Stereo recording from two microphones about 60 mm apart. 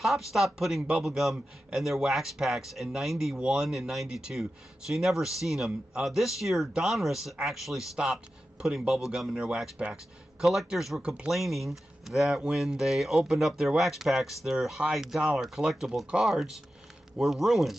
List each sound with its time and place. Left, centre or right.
0.0 s speech: centre
9.8 s speech: centre
10.4 s speech: centre